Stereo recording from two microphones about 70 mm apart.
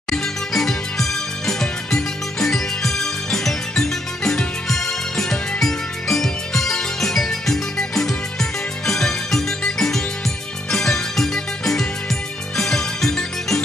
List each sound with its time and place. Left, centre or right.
0.1 s music: centre